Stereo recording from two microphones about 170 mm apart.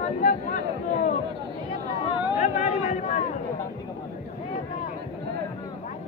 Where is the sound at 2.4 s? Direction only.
45° left (ahead or behind).